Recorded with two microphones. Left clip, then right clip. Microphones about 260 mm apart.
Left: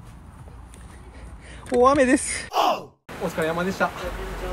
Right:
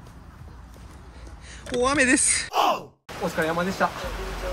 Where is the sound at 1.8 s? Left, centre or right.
Centre.